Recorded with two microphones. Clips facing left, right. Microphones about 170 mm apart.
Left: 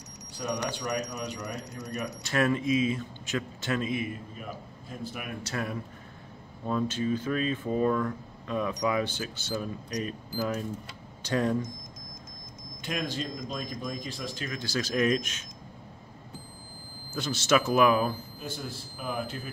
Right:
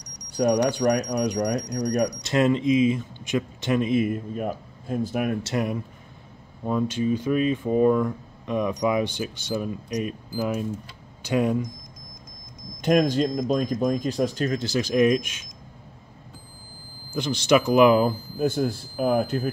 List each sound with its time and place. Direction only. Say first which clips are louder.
0.4 s speech: right 12 dB; 65° right (ahead or behind)
1.7 s speech: right 12 dB; 40° right (ahead or behind)
2.0 s speech: even; 20° right (ahead or behind)
4.0 s speech: right 11 dB; 55° right (ahead or behind)
5.5 s speech: right 7 dB; 15° right (ahead or behind)
12.8 s speech: right 13 dB; 45° right (ahead or behind)
14.7 s speech: right 5 dB; 15° right (ahead or behind)
17.1 s speech: right 5 dB; 15° right (ahead or behind)
18.4 s speech: right 19 dB; 45° right (ahead or behind)